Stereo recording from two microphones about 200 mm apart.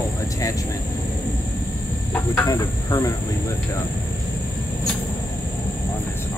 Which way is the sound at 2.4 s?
20° left (ahead or behind).